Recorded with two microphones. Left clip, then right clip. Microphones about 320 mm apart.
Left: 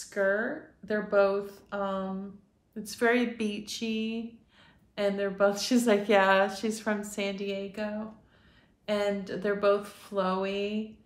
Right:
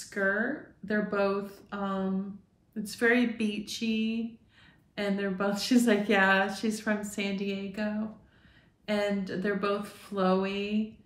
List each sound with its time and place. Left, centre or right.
0.0 s a woman's voice: centre